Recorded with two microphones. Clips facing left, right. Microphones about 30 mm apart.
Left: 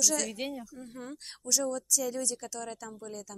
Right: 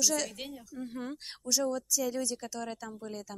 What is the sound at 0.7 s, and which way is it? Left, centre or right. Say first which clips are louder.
A woman's voice: right 4 dB; right.